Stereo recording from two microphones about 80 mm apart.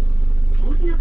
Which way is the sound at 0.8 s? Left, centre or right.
Centre.